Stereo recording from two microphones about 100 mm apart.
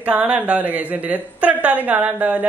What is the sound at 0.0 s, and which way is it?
A woman's voice, 15° right (ahead or behind).